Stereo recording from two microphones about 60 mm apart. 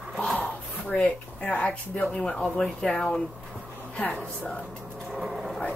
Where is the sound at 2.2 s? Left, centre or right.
Centre.